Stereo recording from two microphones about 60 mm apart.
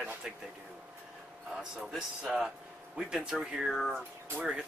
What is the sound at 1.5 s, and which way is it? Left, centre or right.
Speech, centre.